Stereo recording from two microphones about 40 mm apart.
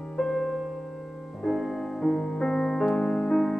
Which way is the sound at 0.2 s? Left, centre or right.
Centre.